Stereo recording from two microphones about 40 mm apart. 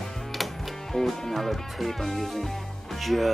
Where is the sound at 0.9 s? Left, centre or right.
Centre.